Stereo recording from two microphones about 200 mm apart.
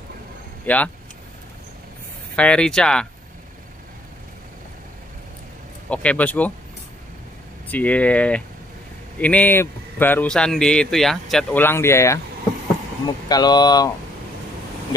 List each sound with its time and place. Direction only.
0.7 s a man's voice: 10° left (ahead or behind)
2.3 s speech: 5° left (ahead or behind)
5.9 s a man's voice: 5° left (ahead or behind)
7.6 s a man's voice: 10° left (ahead or behind)
13.3 s speech: 20° left (ahead or behind)